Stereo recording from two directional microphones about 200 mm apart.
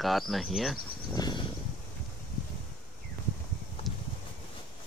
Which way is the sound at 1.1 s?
20° left (ahead or behind).